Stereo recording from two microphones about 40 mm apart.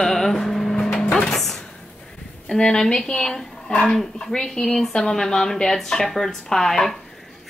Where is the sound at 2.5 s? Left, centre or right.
Centre.